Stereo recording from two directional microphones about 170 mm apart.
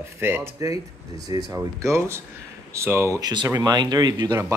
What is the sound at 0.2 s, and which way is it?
Speech, 15° right (ahead or behind).